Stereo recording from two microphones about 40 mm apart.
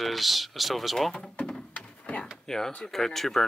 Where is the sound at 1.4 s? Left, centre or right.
Left.